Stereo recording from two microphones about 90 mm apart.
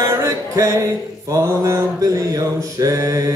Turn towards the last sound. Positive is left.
turn(degrees=-40)  # may be behind; listen again after turning